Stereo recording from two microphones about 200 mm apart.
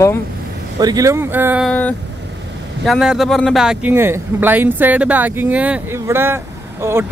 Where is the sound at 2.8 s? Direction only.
Centre (ahead or behind).